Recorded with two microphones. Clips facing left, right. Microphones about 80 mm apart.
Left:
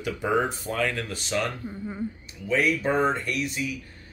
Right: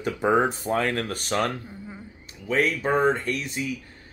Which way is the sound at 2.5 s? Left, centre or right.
Right.